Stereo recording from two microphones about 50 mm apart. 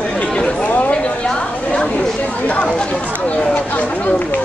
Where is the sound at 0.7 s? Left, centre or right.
Left.